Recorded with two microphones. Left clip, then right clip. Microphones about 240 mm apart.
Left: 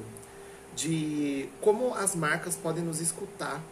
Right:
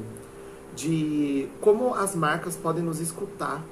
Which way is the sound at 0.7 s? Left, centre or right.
Centre.